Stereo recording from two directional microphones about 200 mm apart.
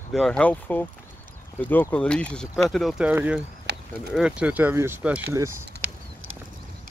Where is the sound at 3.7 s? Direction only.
55° right (ahead or behind).